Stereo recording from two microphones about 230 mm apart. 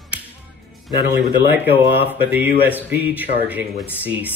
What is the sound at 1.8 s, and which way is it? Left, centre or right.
Mantra, right.